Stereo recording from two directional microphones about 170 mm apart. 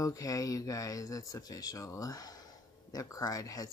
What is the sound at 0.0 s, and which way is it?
Speech, 20° left (ahead or behind).